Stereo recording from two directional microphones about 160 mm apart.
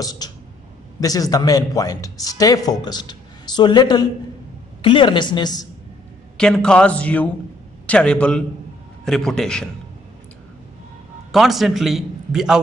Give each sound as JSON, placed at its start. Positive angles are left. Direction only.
{"t": 0.0, "sound": "speech", "side_deg": 25}
{"t": 6.3, "sound": "a man's voice", "side_deg": 5}
{"t": 11.3, "sound": "a man's voice", "side_deg": 0}